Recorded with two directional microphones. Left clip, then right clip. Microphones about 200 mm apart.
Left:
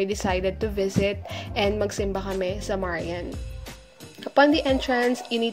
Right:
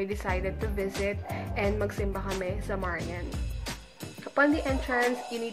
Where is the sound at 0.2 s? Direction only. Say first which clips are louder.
Left 7 dB; 40° left (ahead or behind).